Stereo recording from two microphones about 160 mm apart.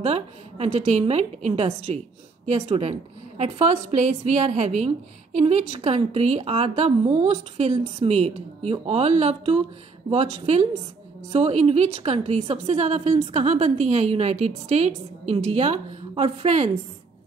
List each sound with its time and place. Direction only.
0.0 s a woman's voice: 40° right (ahead or behind)